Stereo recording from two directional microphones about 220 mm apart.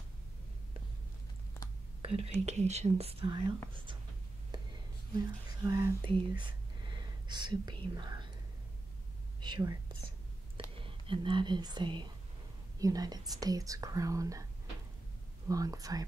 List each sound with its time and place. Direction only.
2.0 s whispering: 25° right (ahead or behind)
2.4 s speech: 30° right (ahead or behind)
4.5 s a sound: 20° right (ahead or behind)
5.7 s speech: 20° right (ahead or behind)
9.4 s speech: 20° right (ahead or behind)
10.8 s speech: 25° right (ahead or behind)
15.4 s speech: 15° right (ahead or behind)